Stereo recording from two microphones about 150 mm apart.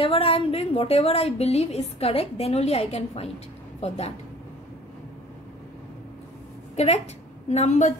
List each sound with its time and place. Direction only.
0.0 s a woman's voice: 40° left (ahead or behind)
6.8 s a woman's voice: 50° left (ahead or behind)